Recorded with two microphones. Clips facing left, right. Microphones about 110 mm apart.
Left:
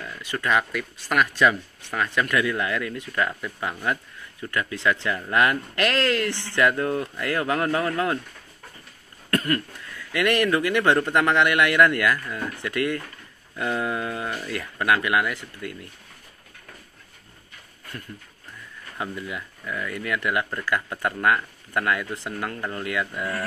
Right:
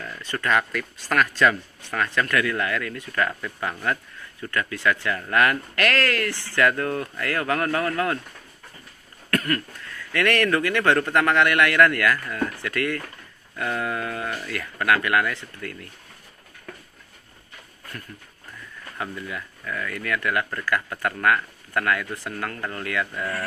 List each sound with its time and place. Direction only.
0.0 s speech: 15° left (ahead or behind)
9.3 s speech: 20° left (ahead or behind)
18.9 s speech: 20° left (ahead or behind)